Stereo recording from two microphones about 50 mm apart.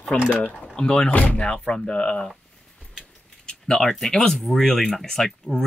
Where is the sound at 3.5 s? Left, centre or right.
Centre.